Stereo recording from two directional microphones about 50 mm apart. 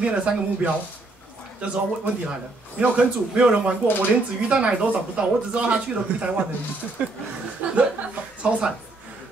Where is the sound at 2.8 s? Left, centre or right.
Right.